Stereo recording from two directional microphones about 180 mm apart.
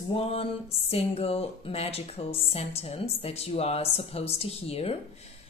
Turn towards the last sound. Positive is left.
turn(degrees=35)  # may be behind; listen again after turning